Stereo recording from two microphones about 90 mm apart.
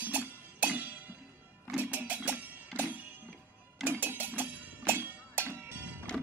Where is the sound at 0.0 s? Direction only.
20° right (ahead or behind).